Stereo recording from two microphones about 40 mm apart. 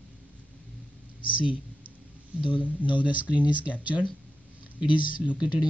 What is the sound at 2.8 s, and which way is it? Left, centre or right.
Speech, right.